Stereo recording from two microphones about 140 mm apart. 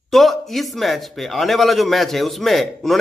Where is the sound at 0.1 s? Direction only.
Centre (ahead or behind).